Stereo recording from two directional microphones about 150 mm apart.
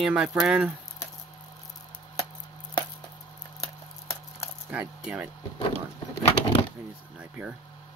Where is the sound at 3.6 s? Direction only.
20° left (ahead or behind).